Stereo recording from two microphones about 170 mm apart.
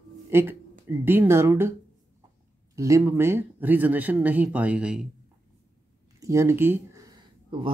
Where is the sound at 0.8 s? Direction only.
10° right (ahead or behind).